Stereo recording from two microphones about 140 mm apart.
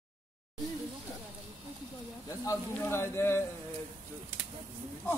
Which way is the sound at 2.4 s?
20° left (ahead or behind).